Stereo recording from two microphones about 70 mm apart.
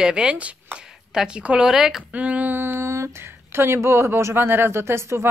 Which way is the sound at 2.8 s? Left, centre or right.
Right.